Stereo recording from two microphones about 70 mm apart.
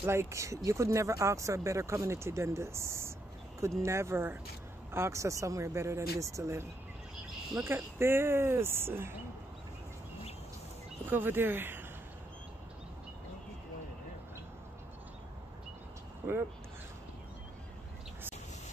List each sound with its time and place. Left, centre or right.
0.0 s speech: right
11.1 s speech: right
16.2 s speech: right